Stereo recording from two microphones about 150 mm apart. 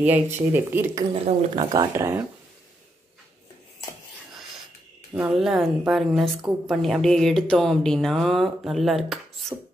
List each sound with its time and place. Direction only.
0.0 s speech: 10° right (ahead or behind)
1.1 s speech: 35° right (ahead or behind)
2.0 s speech: 15° right (ahead or behind)
5.3 s speech: centre (ahead or behind)